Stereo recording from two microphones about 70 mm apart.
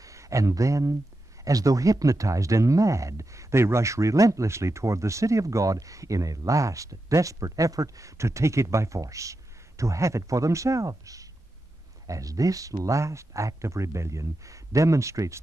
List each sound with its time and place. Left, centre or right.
0.0 s speech: right